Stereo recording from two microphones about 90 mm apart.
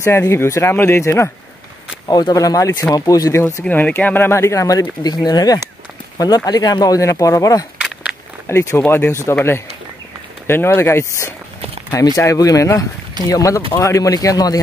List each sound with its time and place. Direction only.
0.0 s speech: 30° left (ahead or behind)
2.0 s speech: 45° left (ahead or behind)
3.6 s speech: 15° left (ahead or behind); by 7.6 s 40° left (ahead or behind)
7.8 s a sound: 10° right (ahead or behind)
8.5 s speech: 30° left (ahead or behind)
10.4 s speech: 25° left (ahead or behind)
12.2 s speech: 40° left (ahead or behind)